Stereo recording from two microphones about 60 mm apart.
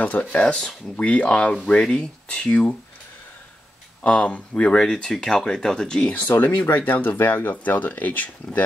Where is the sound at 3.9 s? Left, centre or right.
Left.